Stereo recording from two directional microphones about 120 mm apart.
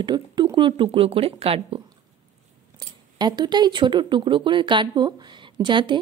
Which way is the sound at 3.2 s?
35° right (ahead or behind).